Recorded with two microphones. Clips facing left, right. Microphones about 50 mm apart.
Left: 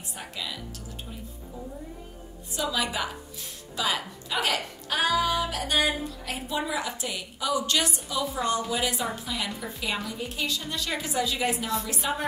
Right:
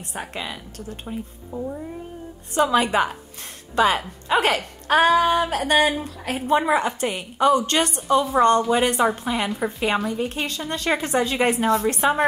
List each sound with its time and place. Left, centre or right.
0.1 s a woman's voice: right